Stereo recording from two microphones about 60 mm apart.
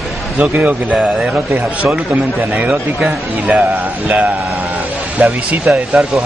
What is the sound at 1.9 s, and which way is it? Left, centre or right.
Speech, right.